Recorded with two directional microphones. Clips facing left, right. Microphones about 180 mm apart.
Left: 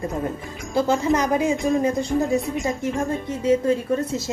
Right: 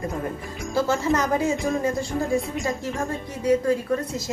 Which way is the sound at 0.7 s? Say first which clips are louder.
Left 2 dB; 20° left (ahead or behind).